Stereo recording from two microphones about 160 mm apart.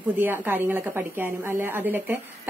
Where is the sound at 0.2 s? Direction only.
10° right (ahead or behind).